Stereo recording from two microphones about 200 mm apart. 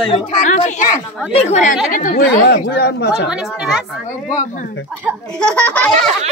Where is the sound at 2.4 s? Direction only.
55° left (ahead or behind).